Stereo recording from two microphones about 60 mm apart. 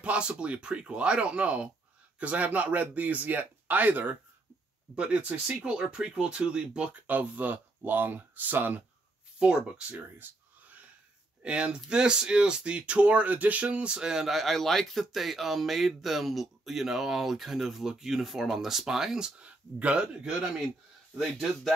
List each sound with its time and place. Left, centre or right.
0.0 s speech: centre
7.1 s speech: right
9.4 s speech: centre
10.0 s a sound: right
11.4 s speech: centre
21.2 s speech: centre